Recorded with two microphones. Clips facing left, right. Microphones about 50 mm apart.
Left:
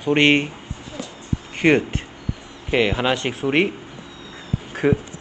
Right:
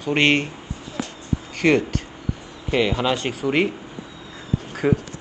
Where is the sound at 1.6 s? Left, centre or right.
Left.